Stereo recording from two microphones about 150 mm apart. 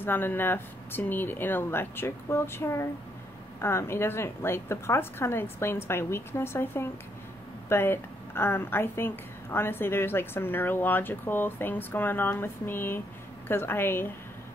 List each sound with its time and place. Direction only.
0.0 s a woman's voice: 15° left (ahead or behind)